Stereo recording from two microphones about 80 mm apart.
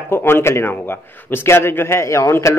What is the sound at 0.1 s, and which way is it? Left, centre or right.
A man's voice, left.